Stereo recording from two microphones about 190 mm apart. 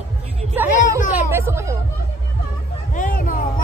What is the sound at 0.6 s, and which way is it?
Hubbub, 10° right (ahead or behind).